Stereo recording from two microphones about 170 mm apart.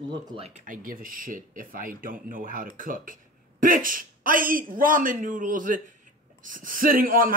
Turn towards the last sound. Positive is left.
turn(degrees=-55)  # may be behind; listen again after turning